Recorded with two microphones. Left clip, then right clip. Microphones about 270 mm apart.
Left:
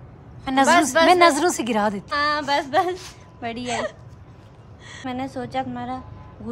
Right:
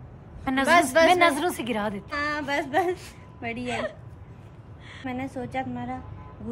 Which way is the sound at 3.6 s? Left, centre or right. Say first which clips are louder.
Left 4 dB; left.